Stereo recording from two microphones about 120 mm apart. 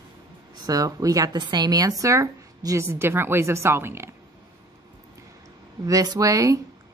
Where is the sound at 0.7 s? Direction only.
30° right (ahead or behind).